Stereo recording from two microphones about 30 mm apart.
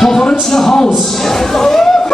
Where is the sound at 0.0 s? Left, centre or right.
Centre.